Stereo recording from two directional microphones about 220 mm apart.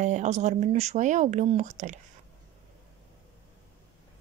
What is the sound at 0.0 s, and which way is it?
Speech, 35° right (ahead or behind).